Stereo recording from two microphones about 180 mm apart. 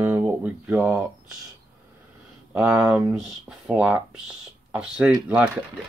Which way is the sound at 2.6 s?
5° right (ahead or behind).